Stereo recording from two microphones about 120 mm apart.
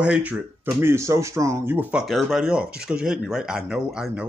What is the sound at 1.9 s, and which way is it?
Speech, centre (ahead or behind).